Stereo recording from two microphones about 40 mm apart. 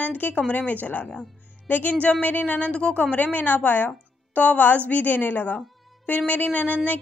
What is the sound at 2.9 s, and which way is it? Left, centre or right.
A woman's voice, left.